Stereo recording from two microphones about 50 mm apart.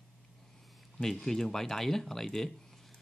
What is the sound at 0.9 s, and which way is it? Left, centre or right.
Speech, centre.